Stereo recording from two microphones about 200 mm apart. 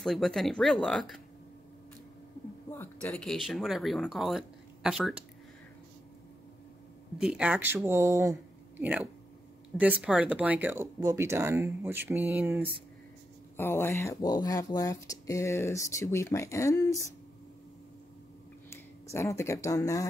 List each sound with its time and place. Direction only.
0.0 s speech: centre (ahead or behind)
2.7 s speech: 10° left (ahead or behind)
7.2 s speech: 5° right (ahead or behind)
13.6 s speech: 10° left (ahead or behind)
19.1 s speech: 15° left (ahead or behind)